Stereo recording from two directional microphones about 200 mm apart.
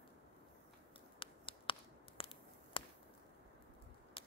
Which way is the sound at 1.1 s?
25° left (ahead or behind).